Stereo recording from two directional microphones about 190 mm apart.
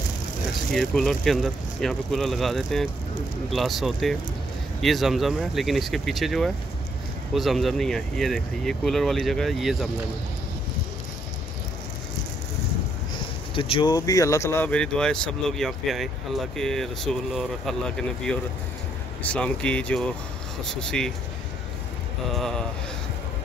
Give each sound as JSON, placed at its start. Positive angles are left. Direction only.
{"t": 0.7, "sound": "speech", "side_deg": 0}
{"t": 13.6, "sound": "speech", "side_deg": 25}
{"t": 22.3, "sound": "speech", "side_deg": 0}